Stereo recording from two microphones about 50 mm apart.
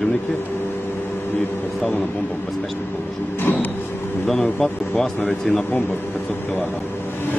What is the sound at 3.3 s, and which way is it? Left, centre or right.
Vehicle, left.